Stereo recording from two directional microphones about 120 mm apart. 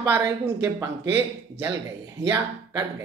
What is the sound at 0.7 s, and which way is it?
Speech, 20° right (ahead or behind).